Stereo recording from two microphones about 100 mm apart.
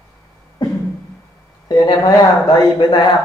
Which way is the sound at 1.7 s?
45° left (ahead or behind).